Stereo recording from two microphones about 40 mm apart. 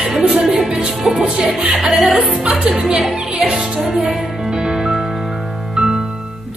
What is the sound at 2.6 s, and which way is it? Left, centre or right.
Speech, right.